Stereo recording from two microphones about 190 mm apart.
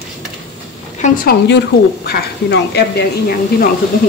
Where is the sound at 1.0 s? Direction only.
50° left (ahead or behind).